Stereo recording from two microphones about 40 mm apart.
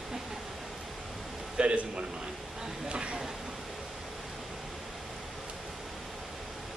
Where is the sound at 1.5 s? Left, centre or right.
Right.